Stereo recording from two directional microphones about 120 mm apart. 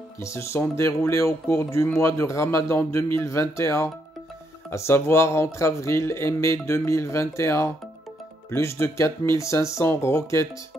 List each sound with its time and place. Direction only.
0.2 s speech: 25° left (ahead or behind)